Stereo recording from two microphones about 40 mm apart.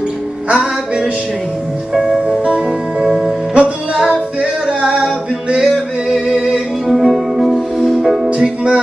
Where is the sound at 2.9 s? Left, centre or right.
Centre.